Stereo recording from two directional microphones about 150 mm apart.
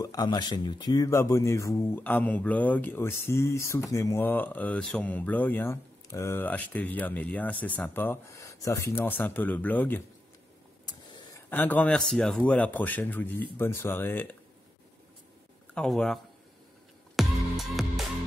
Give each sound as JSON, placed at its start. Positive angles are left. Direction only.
{"t": 0.0, "sound": "speech", "side_deg": 25}
{"t": 10.9, "sound": "a sound", "side_deg": 30}
{"t": 11.5, "sound": "speech", "side_deg": 10}
{"t": 15.7, "sound": "speech", "side_deg": 5}
{"t": 17.1, "sound": "music", "side_deg": 0}